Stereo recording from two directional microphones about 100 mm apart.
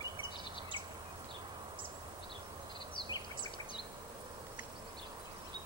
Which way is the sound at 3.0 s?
55° left (ahead or behind).